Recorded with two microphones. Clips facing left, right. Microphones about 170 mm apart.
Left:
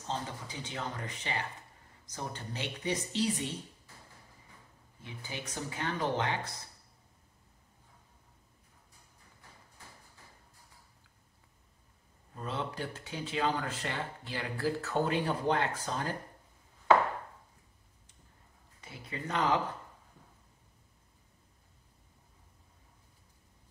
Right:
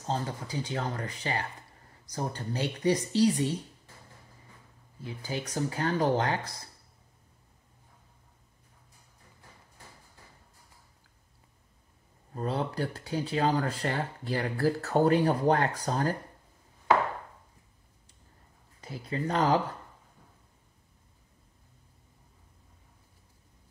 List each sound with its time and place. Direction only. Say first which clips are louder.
0.0 s speech: right 5 dB; 40° right (ahead or behind)
5.0 s speech: right 7 dB; 35° right (ahead or behind)
12.4 s speech: right 6 dB; 40° right (ahead or behind)
18.8 s speech: right 8 dB; 35° right (ahead or behind)